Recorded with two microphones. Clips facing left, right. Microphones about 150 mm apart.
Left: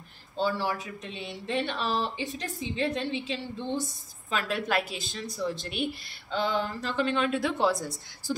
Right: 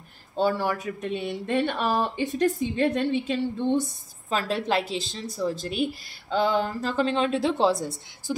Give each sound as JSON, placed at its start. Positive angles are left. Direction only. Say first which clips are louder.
{"t": 0.4, "sound": "speech", "louder": "right 4 dB", "side_deg": -50}
{"t": 4.3, "sound": "a woman's voice", "louder": "right 4 dB", "side_deg": -35}
{"t": 5.2, "sound": "a woman's voice", "louder": "right 2 dB", "side_deg": -40}
{"t": 8.3, "sound": "speech", "louder": "right 1 dB", "side_deg": -15}